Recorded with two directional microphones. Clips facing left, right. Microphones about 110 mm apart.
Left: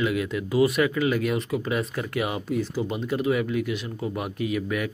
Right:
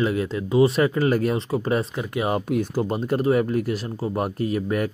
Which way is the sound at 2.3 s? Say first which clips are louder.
Right 4 dB; 55° right (ahead or behind).